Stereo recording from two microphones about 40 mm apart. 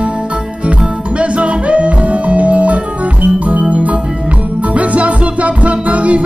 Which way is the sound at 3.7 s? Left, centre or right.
Right.